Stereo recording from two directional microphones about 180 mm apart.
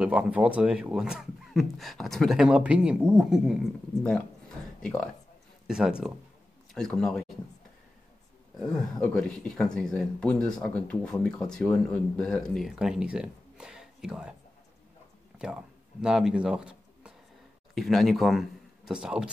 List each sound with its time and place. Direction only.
0.0 s speech: 5° right (ahead or behind)
4.8 s speech: 5° left (ahead or behind)
9.0 s speech: 5° left (ahead or behind)
15.3 s a sound: 5° right (ahead or behind)
17.7 s speech: centre (ahead or behind)